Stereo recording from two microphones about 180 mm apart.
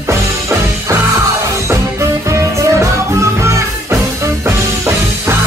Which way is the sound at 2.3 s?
15° right (ahead or behind).